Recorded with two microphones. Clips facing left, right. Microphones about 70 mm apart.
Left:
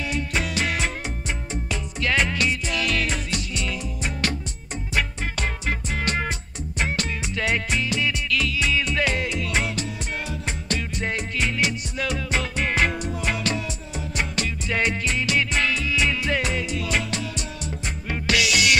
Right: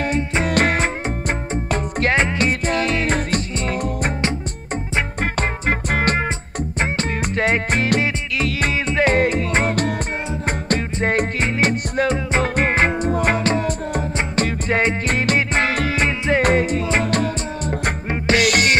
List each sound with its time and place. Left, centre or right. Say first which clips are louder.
0.5 s music: right 8 dB; right
2.1 s music: right 4 dB; right
5.2 s music: right 7 dB; right
6.8 s music: right 4 dB; right
7.8 s music: right 6 dB; right
8.8 s music: right 8 dB; right
13.1 s music: right 8 dB; right
15.0 s music: right 5 dB; right
16.1 s music: right 6 dB; right
16.4 s music: right 9 dB; right
17.1 s music: right 9 dB; right
18.1 s music: right 5 dB; right
18.4 s music: right 3 dB; right